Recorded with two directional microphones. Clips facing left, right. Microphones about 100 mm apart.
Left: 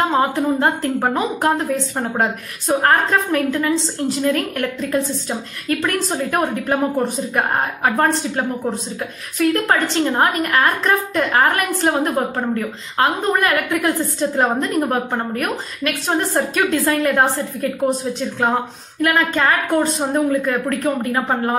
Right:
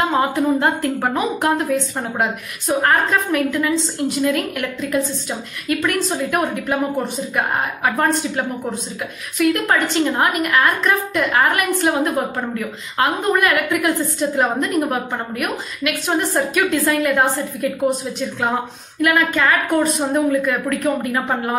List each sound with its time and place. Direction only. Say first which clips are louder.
0.1 s a woman's voice: even; 25° left (ahead or behind)
2.8 s a woman's voice: left 1 dB; 35° left (ahead or behind)
18.9 s a woman's voice: even; 35° left (ahead or behind)